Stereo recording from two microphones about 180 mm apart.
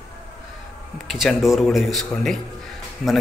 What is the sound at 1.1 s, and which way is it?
A man's voice, centre (ahead or behind).